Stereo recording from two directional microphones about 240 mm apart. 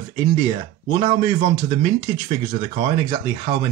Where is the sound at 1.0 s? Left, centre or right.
Right.